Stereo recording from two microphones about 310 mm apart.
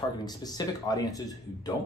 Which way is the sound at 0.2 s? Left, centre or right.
Centre.